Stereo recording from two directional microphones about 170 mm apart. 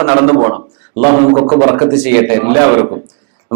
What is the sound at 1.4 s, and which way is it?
A man's voice, 25° right (ahead or behind).